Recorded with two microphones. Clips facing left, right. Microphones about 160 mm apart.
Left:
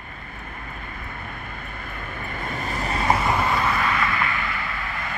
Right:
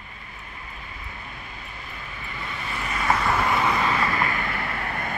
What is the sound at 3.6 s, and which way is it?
Vehicle, 25° right (ahead or behind).